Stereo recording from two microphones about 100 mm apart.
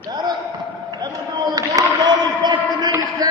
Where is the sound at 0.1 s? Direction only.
45° right (ahead or behind).